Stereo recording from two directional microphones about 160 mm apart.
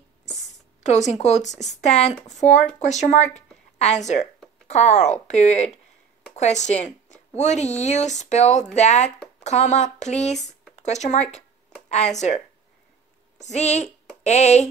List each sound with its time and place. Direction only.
0.8 s speech: 45° left (ahead or behind)
13.4 s speech: 45° left (ahead or behind)